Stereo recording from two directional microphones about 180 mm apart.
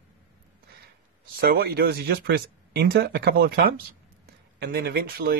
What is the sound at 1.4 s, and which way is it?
Speech, 55° right (ahead or behind).